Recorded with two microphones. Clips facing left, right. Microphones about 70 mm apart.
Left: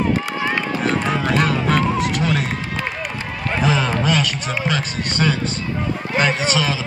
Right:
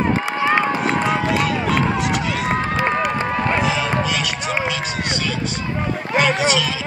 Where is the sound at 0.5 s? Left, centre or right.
Right.